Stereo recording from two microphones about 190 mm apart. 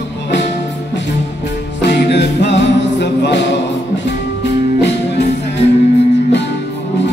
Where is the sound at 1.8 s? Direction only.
65° left (ahead or behind).